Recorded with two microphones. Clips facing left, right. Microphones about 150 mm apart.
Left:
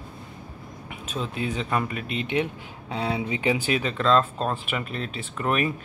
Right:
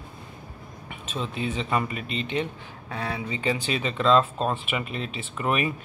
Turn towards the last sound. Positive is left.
turn(degrees=-5)  # may be behind; listen again after turning